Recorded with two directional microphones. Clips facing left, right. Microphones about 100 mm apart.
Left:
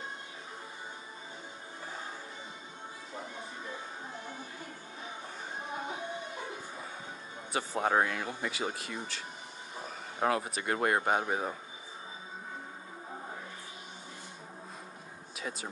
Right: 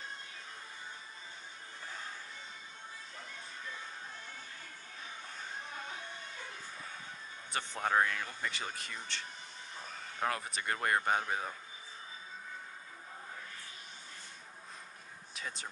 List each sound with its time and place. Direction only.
3.2 s music: 20° left (ahead or behind)
5.7 s music: 20° left (ahead or behind)
7.5 s speech: 10° left (ahead or behind)
15.3 s speech: 5° left (ahead or behind)